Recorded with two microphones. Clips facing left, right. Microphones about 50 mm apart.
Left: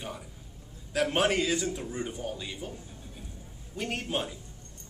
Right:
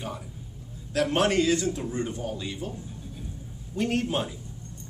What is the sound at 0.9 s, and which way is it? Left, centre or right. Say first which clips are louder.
A man's voice: right 3 dB; centre.